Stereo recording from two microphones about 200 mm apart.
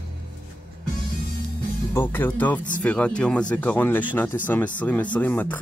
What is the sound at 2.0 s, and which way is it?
Speech, 10° left (ahead or behind).